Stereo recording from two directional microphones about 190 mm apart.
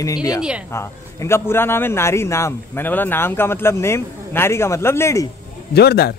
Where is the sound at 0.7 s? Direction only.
15° left (ahead or behind).